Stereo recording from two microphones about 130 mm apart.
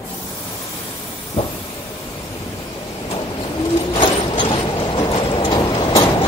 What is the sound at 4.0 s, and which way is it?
Vehicle, 40° left (ahead or behind).